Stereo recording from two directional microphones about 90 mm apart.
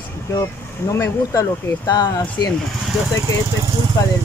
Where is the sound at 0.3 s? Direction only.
40° left (ahead or behind).